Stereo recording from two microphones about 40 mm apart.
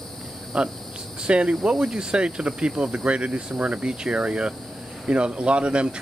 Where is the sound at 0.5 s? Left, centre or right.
Centre.